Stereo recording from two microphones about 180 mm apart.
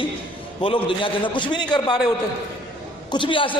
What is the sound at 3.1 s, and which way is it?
Speech, 25° left (ahead or behind).